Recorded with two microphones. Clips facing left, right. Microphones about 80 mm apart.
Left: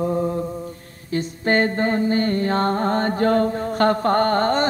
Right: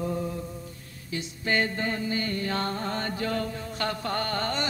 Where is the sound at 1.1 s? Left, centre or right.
Left.